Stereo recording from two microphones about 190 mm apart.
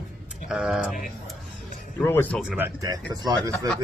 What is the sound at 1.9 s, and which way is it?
Speech, 10° left (ahead or behind).